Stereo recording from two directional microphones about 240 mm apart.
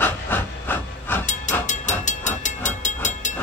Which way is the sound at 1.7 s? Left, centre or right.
Left.